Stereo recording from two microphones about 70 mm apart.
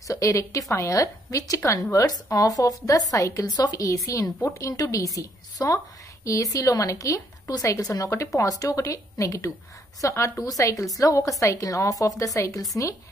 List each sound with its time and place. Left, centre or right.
0.1 s a woman's voice: left
2.0 s a woman's voice: left